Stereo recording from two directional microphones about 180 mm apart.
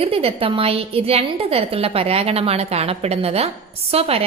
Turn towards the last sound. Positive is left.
turn(degrees=-35)  # may be behind; listen again after turning